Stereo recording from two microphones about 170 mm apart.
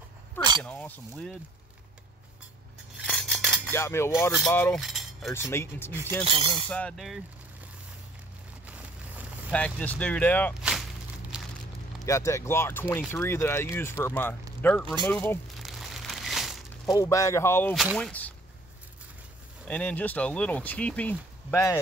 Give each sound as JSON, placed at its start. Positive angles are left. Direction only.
{"t": 0.7, "sound": "speech", "side_deg": 10}
{"t": 3.1, "sound": "a sound", "side_deg": 5}
{"t": 3.7, "sound": "speech", "side_deg": 15}
{"t": 4.7, "sound": "keys jangling", "side_deg": 0}
{"t": 5.3, "sound": "speech", "side_deg": 15}
{"t": 6.2, "sound": "speech", "side_deg": -30}
{"t": 6.7, "sound": "speech", "side_deg": 5}
{"t": 8.6, "sound": "a sound", "side_deg": -10}
{"t": 9.5, "sound": "speech", "side_deg": 10}
{"t": 11.3, "sound": "a sound", "side_deg": -5}
{"t": 12.1, "sound": "speech", "side_deg": 15}
{"t": 15.6, "sound": "a sound", "side_deg": 0}
{"t": 16.9, "sound": "speech", "side_deg": 20}
{"t": 19.7, "sound": "speech", "side_deg": 10}